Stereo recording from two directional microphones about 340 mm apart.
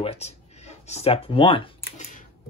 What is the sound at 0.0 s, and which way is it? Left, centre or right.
Speech, centre.